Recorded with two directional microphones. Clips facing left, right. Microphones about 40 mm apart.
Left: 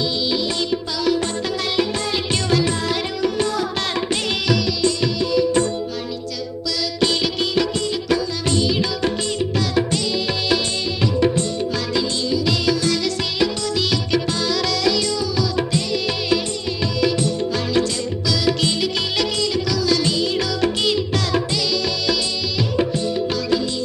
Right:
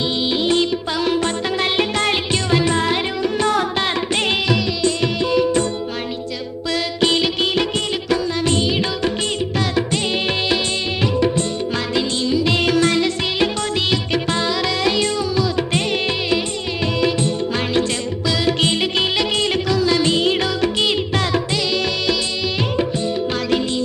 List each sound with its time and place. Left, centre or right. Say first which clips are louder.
0.2 s music: right 4 dB; right
2.5 s child singing: right 3 dB; right
4.8 s music: right 2 dB; right
6.7 s music: right 3 dB; right
10.1 s music of bollywood: right 2 dB; right
11.7 s music: right 1 dB; right
12.5 s music: right 3 dB; right
13.0 s music: right 2 dB; right
18.2 s music: right 2 dB; right
20.7 s music: right 1 dB; right